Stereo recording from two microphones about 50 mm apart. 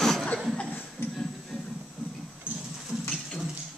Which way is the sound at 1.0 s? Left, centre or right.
Left.